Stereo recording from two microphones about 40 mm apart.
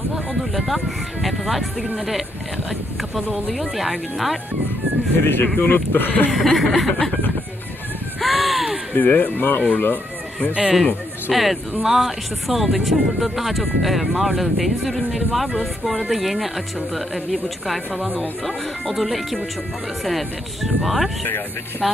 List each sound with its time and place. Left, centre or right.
0.4 s speech: centre
3.5 s speech: centre
5.2 s speech: left
6.3 s speech: centre
8.2 s a sound: centre
8.9 s speech: left
11.3 s speech: centre